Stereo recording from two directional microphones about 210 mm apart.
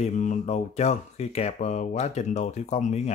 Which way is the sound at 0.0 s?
35° left (ahead or behind).